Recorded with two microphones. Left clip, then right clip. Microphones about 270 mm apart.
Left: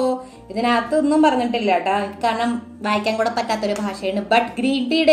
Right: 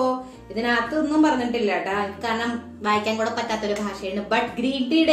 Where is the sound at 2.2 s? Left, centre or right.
Left.